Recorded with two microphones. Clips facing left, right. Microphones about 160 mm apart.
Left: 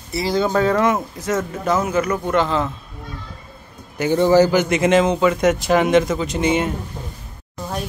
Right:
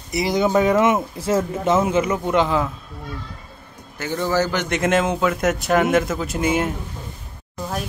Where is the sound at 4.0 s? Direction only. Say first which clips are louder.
Left 7 dB; 15° left (ahead or behind).